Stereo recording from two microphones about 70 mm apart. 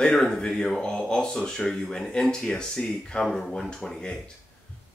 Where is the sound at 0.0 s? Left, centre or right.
Centre.